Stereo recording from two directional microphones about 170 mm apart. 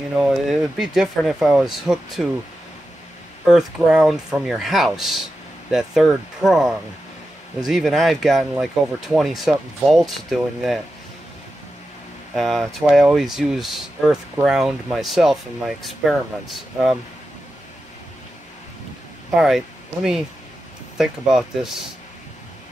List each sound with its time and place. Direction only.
0.2 s speech: 5° right (ahead or behind)
3.4 s speech: 5° right (ahead or behind)
12.4 s speech: centre (ahead or behind)
19.3 s speech: 5° right (ahead or behind)